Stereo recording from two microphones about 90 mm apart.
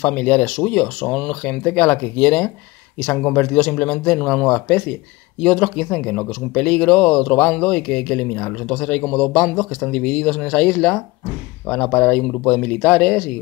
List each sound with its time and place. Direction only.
0.0 s speech: 20° left (ahead or behind)